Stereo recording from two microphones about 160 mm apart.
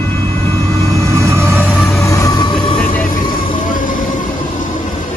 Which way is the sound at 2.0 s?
20° left (ahead or behind).